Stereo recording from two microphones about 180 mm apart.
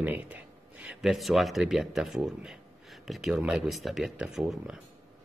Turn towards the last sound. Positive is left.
turn(degrees=-5)  # may be behind; listen again after turning